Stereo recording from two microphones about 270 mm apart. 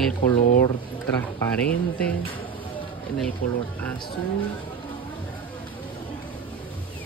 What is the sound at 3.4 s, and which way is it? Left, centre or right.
Speech, left.